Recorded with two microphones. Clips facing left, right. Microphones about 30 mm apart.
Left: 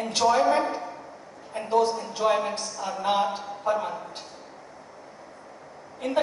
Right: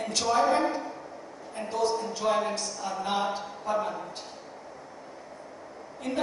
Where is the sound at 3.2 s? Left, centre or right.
Centre.